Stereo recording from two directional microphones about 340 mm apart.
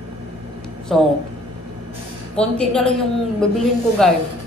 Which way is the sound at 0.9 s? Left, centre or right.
Centre.